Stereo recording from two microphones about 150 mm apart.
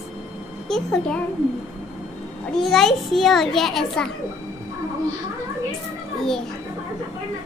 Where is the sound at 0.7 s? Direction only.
5° left (ahead or behind).